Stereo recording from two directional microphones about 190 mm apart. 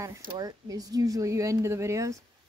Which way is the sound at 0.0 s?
20° right (ahead or behind).